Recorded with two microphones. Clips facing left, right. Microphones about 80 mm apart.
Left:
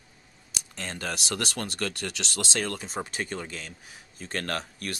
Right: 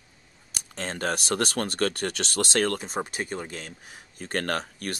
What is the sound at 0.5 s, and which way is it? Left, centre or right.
Speech, right.